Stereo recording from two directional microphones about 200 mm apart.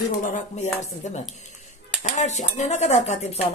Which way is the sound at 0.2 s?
35° left (ahead or behind).